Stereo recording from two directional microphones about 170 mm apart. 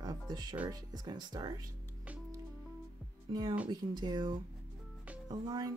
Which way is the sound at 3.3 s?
30° right (ahead or behind).